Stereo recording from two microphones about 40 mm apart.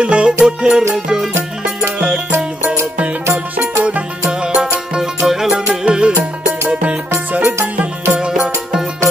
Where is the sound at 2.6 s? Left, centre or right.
Right.